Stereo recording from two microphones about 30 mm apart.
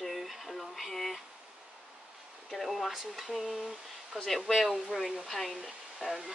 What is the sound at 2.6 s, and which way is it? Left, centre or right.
Speech, centre.